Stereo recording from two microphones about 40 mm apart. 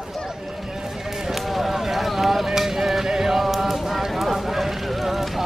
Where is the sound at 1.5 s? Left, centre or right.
Centre.